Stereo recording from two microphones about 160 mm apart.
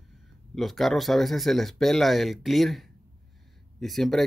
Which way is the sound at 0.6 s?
Centre (ahead or behind).